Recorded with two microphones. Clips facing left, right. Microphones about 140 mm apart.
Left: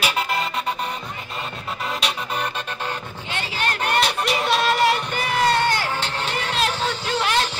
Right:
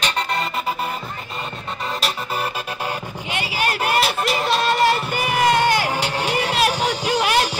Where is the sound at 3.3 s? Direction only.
10° right (ahead or behind).